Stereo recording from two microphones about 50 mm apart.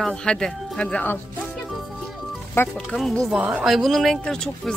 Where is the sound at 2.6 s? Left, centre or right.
Left.